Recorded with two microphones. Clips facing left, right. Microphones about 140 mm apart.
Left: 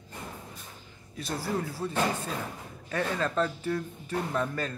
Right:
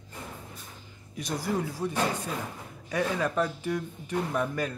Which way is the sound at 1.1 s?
15° right (ahead or behind).